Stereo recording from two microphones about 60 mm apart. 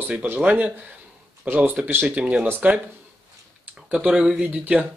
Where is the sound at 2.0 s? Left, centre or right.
Right.